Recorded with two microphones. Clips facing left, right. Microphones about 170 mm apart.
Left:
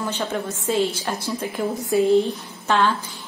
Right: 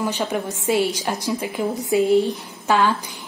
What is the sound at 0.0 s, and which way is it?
A woman's voice, 15° right (ahead or behind).